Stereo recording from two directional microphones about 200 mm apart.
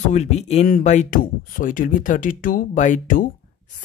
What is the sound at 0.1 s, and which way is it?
Speech, 35° left (ahead or behind).